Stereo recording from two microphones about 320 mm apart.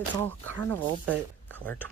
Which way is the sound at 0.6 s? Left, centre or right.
Centre.